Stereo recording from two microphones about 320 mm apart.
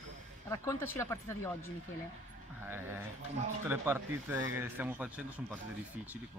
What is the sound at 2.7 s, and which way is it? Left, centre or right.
Speech, centre.